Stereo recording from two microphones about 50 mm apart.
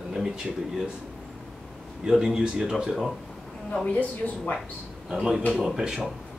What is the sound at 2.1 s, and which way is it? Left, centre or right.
Speech, centre.